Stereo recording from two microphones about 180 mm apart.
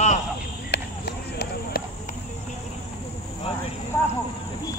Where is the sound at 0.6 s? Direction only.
65° left (ahead or behind).